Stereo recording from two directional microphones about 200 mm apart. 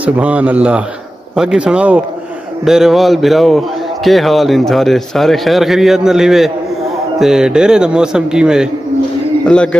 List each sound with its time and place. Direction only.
0.0 s a man's voice: 5° right (ahead or behind)